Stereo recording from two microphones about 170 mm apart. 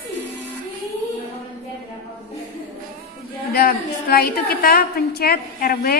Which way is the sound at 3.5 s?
60° left (ahead or behind).